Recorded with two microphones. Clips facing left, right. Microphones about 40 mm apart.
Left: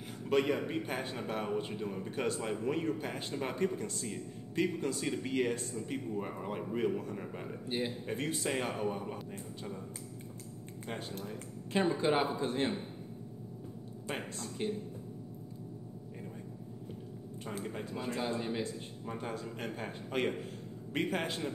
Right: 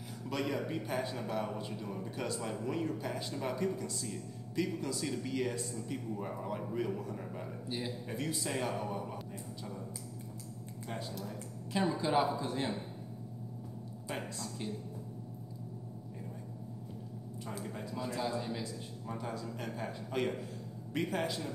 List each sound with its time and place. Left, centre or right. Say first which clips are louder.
0.3 s a man's voice: left 5 dB; left
7.0 s a man's voice: left 1 dB; left
10.9 s a man's voice: left 1 dB; left
14.4 s a man's voice: left 4 dB; left
17.6 s a man's voice: left 1 dB; left